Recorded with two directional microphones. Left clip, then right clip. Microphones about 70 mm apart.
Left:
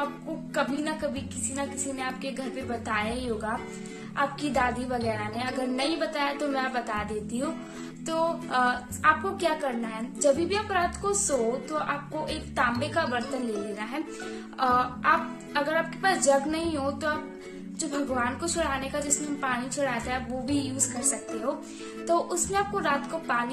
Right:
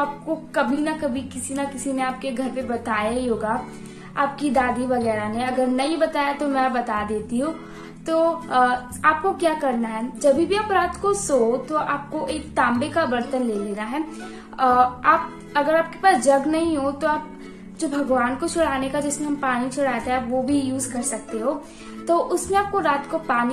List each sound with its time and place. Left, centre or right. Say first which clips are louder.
0.6 s a woman's voice: right 6 dB; left